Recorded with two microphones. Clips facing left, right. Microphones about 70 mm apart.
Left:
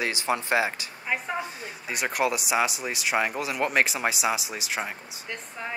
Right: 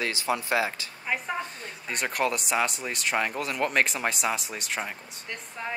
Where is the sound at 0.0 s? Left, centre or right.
Left.